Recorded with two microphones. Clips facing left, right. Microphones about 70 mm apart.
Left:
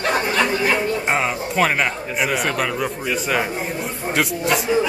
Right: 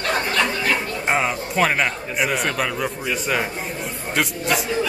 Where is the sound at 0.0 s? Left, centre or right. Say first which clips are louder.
Left 2 dB; centre.